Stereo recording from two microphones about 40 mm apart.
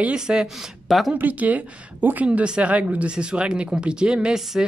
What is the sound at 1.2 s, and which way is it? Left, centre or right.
Speech, right.